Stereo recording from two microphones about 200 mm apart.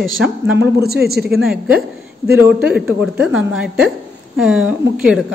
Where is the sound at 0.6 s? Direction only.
50° right (ahead or behind).